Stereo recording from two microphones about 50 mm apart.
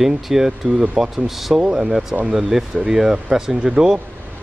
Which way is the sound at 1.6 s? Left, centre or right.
Right.